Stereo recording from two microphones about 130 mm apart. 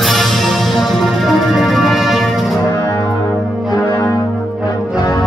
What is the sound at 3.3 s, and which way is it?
Brass instrument, 5° right (ahead or behind).